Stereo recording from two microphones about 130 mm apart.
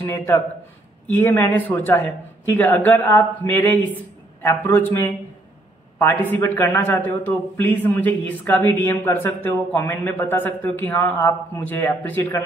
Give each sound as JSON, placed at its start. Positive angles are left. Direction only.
{"t": 0.0, "sound": "a man's voice", "side_deg": 20}